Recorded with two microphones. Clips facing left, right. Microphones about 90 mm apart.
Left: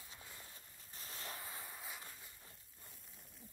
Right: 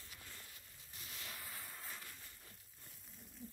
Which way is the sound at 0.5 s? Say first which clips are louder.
Left 1 dB; 35° left (ahead or behind).